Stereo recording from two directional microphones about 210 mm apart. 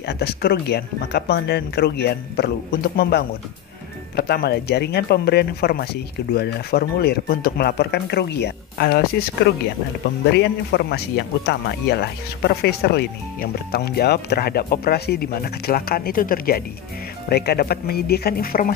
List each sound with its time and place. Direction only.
0.0 s speech: 50° left (ahead or behind)